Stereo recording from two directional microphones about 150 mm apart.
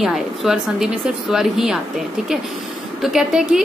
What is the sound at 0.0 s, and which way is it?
A woman's voice, centre (ahead or behind).